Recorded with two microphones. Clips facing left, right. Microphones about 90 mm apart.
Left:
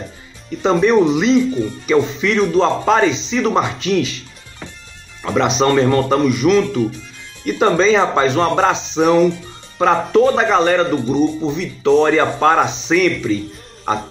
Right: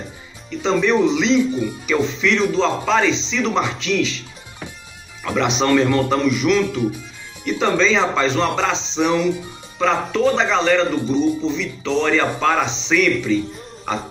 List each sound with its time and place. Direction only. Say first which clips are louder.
0.5 s speech: left 4 dB; 45° left (ahead or behind)
5.2 s a man's voice: left 4 dB; 35° left (ahead or behind)